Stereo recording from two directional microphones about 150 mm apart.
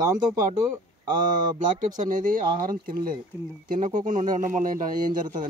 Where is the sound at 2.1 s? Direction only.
60° right (ahead or behind).